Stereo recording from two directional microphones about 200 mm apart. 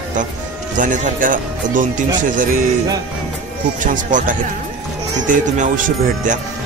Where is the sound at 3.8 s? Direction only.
40° right (ahead or behind).